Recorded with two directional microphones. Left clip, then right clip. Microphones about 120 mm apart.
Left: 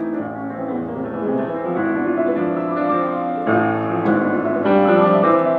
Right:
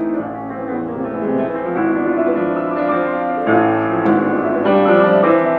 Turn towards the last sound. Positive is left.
turn(degrees=-30)  # may be behind; listen again after turning